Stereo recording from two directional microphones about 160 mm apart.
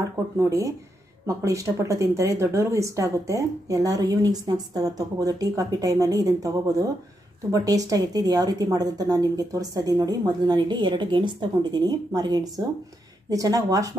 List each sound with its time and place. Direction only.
0.4 s speech: 20° right (ahead or behind)